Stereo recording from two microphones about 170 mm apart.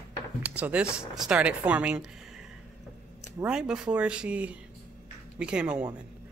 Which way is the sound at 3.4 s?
5° right (ahead or behind).